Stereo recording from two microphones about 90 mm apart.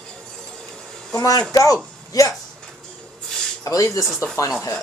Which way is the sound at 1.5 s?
40° left (ahead or behind).